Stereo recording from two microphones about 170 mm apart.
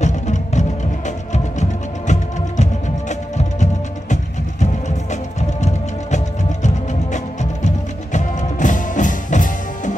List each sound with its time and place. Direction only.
0.0 s music: 45° left (ahead or behind)